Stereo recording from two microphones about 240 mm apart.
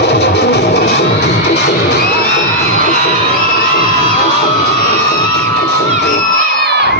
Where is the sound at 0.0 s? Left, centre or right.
Left.